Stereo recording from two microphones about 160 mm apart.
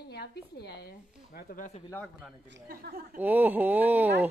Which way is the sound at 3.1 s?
10° right (ahead or behind).